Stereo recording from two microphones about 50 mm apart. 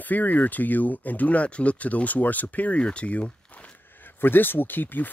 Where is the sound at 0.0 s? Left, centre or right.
Left.